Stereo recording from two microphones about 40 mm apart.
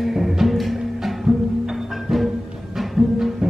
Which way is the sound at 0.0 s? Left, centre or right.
Centre.